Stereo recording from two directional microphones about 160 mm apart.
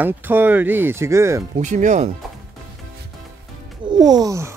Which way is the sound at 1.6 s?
50° right (ahead or behind).